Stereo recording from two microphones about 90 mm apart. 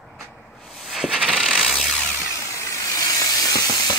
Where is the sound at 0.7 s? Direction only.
Centre (ahead or behind).